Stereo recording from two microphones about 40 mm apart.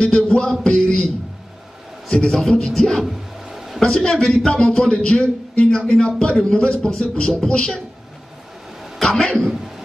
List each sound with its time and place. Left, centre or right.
0.0 s music: centre
2.0 s a man's voice: centre
2.7 s speech: centre
3.4 s a sound: centre
3.8 s speech: centre
4.5 s speech: centre
9.1 s speech: centre